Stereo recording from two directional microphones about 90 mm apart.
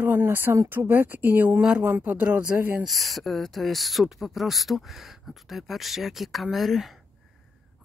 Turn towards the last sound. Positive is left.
turn(degrees=0)  # may be behind; listen again after turning